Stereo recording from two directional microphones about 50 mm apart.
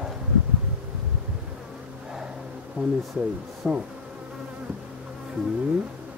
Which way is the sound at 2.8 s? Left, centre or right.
Right.